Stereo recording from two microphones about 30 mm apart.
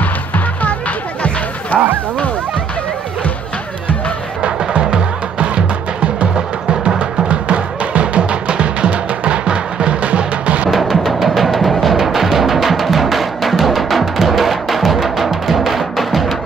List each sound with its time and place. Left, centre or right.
1.7 s speech: left
4.4 s music: right
6.3 s music: right
7.0 s music: right
10.1 s music: right
10.7 s music: centre